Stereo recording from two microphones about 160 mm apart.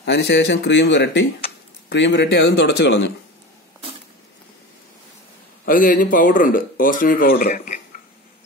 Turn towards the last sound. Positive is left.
turn(degrees=55)  # may be behind; listen again after turning